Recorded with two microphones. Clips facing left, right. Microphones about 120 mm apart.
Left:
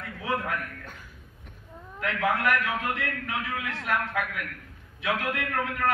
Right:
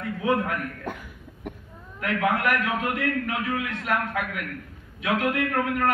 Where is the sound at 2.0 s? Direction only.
20° right (ahead or behind).